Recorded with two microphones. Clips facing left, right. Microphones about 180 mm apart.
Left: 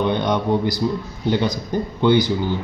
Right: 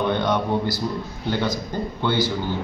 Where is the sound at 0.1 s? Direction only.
20° left (ahead or behind).